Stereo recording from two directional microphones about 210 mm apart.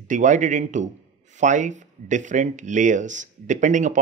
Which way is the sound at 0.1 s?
35° right (ahead or behind).